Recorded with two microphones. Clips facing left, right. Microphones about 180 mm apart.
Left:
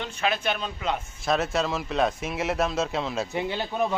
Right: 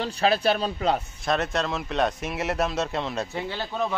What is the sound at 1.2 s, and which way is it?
Speech, centre (ahead or behind).